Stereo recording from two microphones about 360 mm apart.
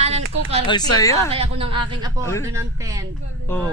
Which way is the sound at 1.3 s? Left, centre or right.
Centre.